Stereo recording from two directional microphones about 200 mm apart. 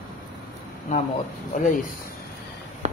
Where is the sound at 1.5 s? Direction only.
40° left (ahead or behind).